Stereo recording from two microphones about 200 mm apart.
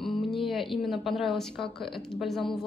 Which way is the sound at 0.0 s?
Centre (ahead or behind).